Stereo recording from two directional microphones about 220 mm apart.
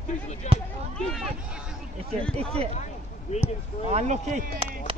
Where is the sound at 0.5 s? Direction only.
30° left (ahead or behind).